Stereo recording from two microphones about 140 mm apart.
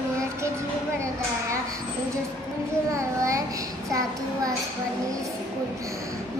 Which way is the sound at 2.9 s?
20° right (ahead or behind).